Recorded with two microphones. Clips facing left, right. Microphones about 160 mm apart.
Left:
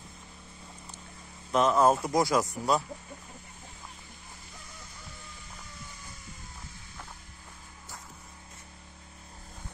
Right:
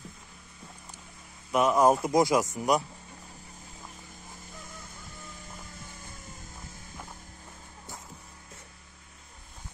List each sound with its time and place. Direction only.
1.5 s speech: 10° right (ahead or behind)